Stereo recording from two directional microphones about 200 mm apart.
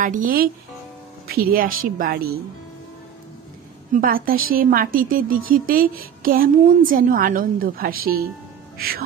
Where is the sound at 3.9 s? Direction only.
45° right (ahead or behind).